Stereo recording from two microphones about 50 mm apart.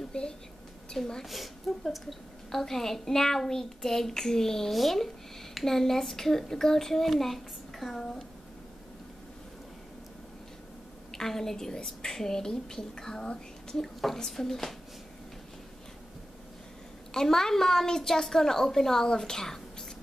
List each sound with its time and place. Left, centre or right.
0.1 s a woman's voice: centre
1.2 s a woman's voice: centre
11.1 s a woman's voice: centre
17.1 s a woman's voice: centre